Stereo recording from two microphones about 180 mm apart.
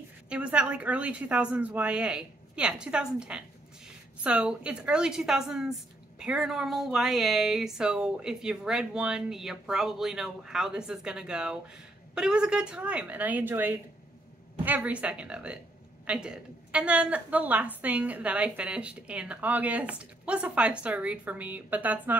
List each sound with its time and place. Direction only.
0.3 s a woman's voice: 5° right (ahead or behind)